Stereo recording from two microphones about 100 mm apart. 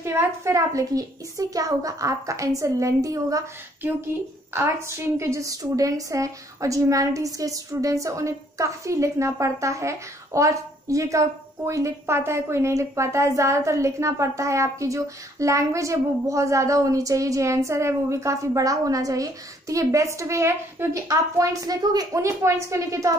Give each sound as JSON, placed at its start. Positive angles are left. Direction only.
{"t": 0.0, "sound": "a woman's voice", "side_deg": -25}
{"t": 4.6, "sound": "a woman's voice", "side_deg": -25}